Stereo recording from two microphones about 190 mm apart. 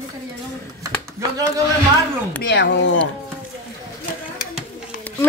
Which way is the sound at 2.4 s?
65° left (ahead or behind).